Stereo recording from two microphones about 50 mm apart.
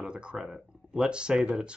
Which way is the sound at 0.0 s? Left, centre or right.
Centre.